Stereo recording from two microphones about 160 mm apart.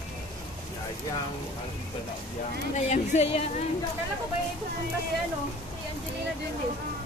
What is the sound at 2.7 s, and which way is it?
Speech, 45° left (ahead or behind).